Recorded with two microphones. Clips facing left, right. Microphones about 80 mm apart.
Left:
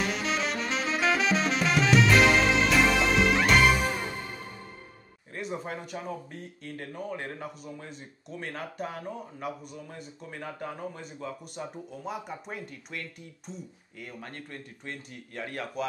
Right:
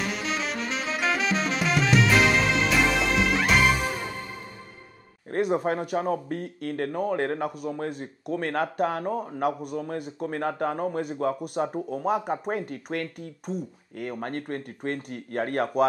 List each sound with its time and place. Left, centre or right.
0.0 s saxophone: centre
5.3 s speech: right